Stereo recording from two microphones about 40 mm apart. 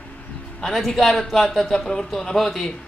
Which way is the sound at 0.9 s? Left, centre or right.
Centre.